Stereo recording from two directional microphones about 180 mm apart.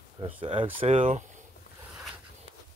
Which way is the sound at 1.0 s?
45° right (ahead or behind).